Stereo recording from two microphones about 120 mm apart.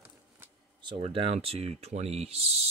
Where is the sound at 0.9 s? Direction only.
50° right (ahead or behind).